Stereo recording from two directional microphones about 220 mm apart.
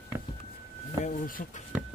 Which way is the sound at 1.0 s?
35° left (ahead or behind).